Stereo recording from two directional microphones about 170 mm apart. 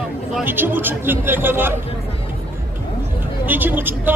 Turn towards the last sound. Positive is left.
turn(degrees=-10)  # may be behind; listen again after turning